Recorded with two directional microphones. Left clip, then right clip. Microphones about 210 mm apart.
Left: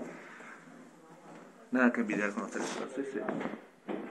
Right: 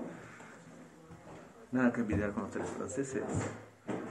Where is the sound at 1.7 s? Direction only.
55° left (ahead or behind).